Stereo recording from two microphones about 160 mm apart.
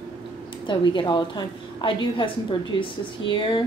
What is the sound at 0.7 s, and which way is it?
A woman's voice, 30° left (ahead or behind).